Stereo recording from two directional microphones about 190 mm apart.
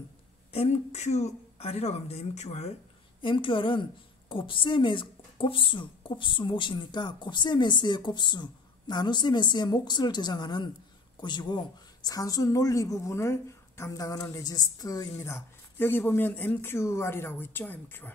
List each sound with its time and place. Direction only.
0.5 s a woman's voice: 35° left (ahead or behind); by 18.1 s 10° left (ahead or behind)